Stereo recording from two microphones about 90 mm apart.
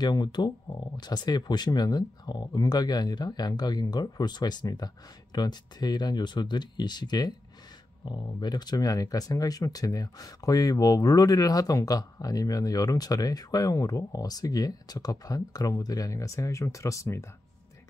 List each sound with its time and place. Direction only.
0.0 s speech: 50° left (ahead or behind); by 17.3 s 30° left (ahead or behind)